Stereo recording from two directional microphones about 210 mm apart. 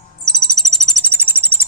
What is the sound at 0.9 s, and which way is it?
Music, 10° right (ahead or behind).